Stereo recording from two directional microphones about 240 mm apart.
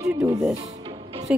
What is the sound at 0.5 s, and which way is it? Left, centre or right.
Music, right.